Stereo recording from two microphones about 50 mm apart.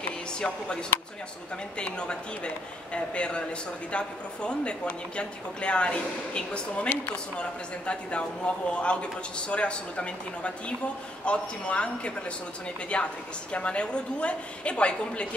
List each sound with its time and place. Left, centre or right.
0.3 s speech: centre
2.0 s a woman's voice: left